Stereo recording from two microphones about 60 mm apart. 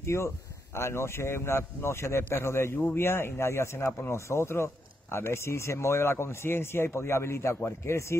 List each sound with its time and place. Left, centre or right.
0.0 s a man's voice: left